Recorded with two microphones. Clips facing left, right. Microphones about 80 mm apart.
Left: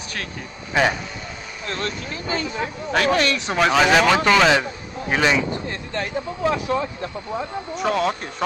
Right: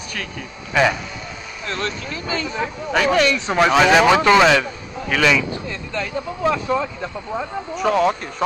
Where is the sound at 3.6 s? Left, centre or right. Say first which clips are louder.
Right 2 dB; centre.